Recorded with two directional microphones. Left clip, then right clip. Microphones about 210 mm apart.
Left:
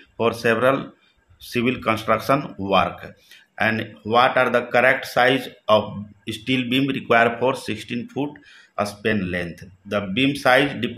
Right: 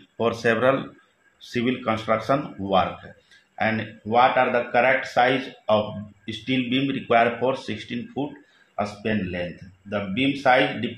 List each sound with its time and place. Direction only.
0.2 s speech: 20° left (ahead or behind)